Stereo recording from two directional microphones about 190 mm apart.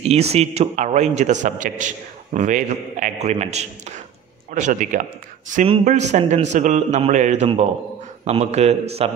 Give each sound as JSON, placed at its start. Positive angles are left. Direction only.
{"t": 0.0, "sound": "a man's voice", "side_deg": -35}